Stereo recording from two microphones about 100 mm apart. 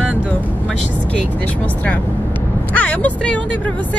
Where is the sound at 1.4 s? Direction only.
15° left (ahead or behind).